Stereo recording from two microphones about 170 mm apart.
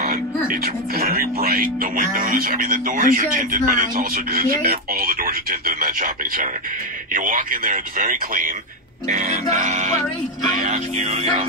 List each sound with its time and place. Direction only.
0.5 s speech: 60° right (ahead or behind); by 11.4 s 40° right (ahead or behind)